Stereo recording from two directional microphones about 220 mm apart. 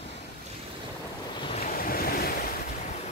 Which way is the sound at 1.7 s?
40° left (ahead or behind).